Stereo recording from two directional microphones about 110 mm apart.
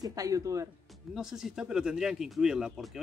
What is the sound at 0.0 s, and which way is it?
Speech, 35° right (ahead or behind).